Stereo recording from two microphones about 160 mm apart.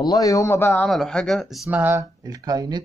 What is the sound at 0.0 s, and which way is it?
Speech, 20° left (ahead or behind).